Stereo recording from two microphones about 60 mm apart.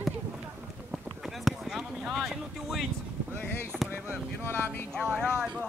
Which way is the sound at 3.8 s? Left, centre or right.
Right.